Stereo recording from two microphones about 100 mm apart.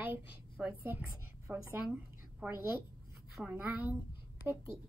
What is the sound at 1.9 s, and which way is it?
A woman's voice, 15° right (ahead or behind).